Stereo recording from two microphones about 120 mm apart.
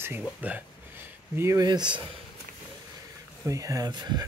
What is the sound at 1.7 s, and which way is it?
Speech, 40° right (ahead or behind).